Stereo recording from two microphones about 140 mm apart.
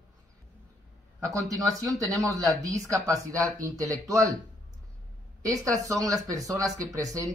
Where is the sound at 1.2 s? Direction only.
25° right (ahead or behind).